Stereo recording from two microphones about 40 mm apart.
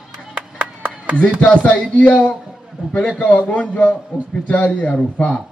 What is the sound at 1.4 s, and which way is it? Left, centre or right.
A man's voice, left.